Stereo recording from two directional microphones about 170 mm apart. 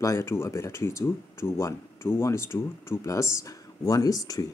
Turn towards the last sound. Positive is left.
turn(degrees=20)  # may be behind; listen again after turning